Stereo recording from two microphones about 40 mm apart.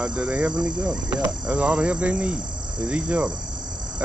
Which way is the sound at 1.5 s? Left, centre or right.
Right.